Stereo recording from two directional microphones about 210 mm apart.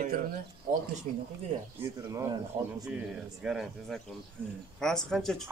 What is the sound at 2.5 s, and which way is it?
Speech, 25° right (ahead or behind).